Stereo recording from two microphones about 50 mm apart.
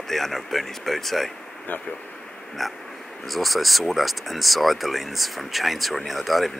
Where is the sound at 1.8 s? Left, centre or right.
Centre.